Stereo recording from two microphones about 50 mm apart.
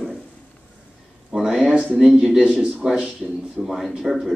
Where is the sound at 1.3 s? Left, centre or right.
Centre.